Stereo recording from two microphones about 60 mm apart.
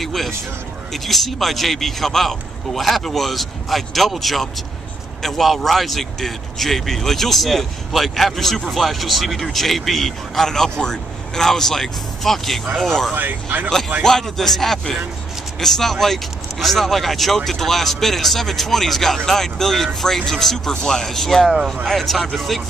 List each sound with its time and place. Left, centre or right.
0.0 s speech: centre
13.1 s speech: right
14.0 s speech: centre